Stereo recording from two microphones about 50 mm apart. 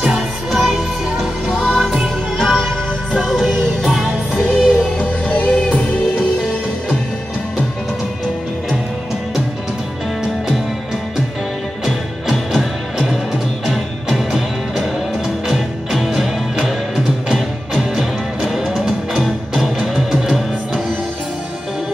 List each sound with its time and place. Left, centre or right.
0.0 s music: centre
4.9 s music: left
11.8 s music: centre